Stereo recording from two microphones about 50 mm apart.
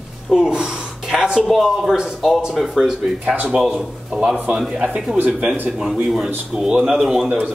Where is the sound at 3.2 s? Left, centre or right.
Right.